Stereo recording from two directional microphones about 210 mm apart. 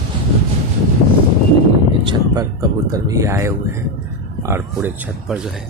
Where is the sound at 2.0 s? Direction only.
20° right (ahead or behind).